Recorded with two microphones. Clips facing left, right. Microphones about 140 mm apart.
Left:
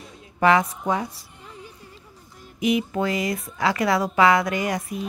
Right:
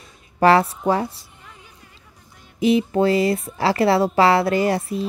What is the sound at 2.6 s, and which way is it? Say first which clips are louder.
A woman's voice: right 5 dB; 30° right (ahead or behind).